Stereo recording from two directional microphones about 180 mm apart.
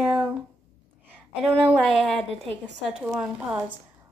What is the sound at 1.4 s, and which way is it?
A woman's voice, centre (ahead or behind).